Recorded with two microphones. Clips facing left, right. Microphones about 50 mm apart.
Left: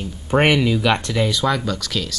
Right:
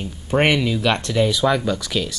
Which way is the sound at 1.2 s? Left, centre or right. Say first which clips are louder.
Right 2 dB; centre.